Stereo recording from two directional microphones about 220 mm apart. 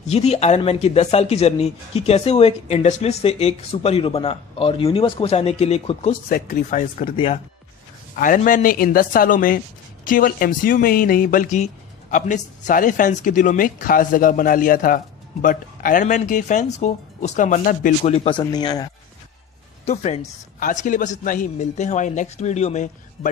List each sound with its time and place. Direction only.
0.0 s speech: 30° left (ahead or behind)
6.2 s speech: 45° left (ahead or behind)
7.0 s speech: 25° left (ahead or behind)
8.2 s speech: 35° left (ahead or behind)
18.1 s speech: 25° left (ahead or behind)
19.8 s speech: 30° left (ahead or behind)